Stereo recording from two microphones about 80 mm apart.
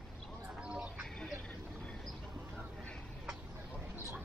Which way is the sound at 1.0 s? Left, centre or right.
Centre.